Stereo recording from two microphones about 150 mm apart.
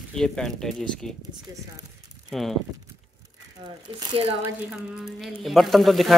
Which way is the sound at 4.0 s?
35° right (ahead or behind).